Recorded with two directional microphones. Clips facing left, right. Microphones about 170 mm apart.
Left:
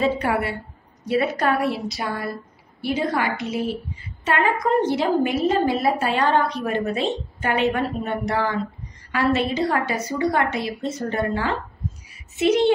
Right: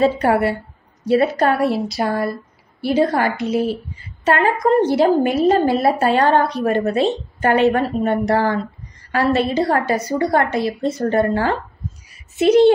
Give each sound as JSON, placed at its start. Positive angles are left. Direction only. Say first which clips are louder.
{"t": 0.0, "sound": "a woman's voice", "louder": "right 6 dB", "side_deg": -35}
{"t": 2.0, "sound": "a woman's voice", "louder": "right 7 dB", "side_deg": -45}